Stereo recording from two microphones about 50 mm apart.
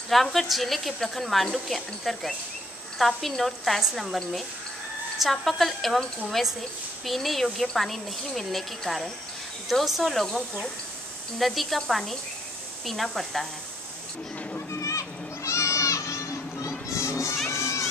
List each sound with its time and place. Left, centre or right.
0.1 s a woman's voice: centre
14.7 s children playing: left
17.5 s crowd: left